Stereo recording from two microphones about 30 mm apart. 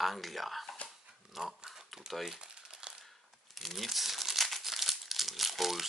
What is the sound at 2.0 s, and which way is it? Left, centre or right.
Speech, right.